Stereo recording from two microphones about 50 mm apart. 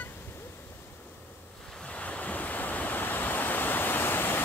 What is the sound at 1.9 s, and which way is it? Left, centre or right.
Waves, left.